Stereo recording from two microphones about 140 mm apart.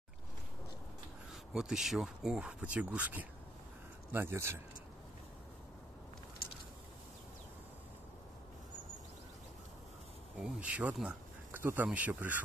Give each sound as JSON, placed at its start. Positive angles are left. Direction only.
{"t": 1.3, "sound": "speech", "side_deg": -5}
{"t": 10.4, "sound": "speech", "side_deg": -10}